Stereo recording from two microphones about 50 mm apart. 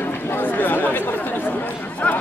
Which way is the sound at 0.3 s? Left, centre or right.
Left.